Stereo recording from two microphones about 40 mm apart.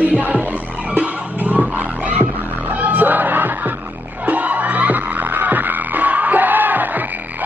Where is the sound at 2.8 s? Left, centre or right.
Right.